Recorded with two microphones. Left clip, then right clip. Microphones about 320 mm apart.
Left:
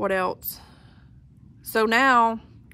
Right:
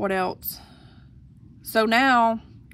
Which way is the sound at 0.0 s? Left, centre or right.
Centre.